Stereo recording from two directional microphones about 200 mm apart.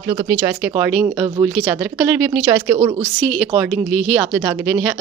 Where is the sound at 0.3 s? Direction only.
10° right (ahead or behind).